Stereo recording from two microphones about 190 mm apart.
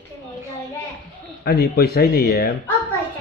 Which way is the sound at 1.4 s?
55° left (ahead or behind).